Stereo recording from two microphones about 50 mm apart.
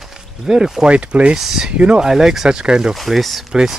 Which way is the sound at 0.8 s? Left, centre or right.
Right.